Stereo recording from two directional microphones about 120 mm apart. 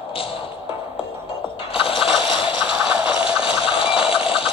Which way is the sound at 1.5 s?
50° left (ahead or behind).